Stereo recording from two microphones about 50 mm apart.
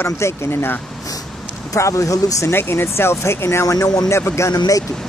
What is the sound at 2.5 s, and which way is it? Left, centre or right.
Speech, left.